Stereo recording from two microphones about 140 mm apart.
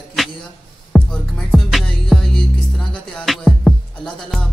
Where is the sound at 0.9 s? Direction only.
Centre (ahead or behind).